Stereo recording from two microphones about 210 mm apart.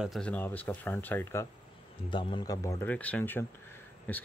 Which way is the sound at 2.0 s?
25° left (ahead or behind).